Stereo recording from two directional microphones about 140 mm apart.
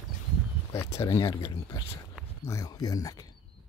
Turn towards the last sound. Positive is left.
turn(degrees=25)  # may be behind; listen again after turning